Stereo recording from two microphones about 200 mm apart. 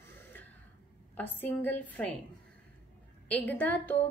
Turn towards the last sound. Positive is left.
turn(degrees=5)  # may be behind; listen again after turning